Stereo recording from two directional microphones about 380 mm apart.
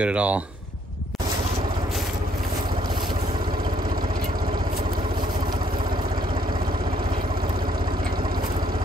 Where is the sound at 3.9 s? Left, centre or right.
Right.